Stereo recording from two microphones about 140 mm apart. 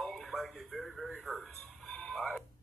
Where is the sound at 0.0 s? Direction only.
Centre (ahead or behind).